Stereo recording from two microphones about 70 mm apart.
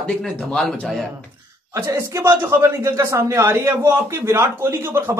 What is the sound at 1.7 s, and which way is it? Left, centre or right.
A man's voice, right.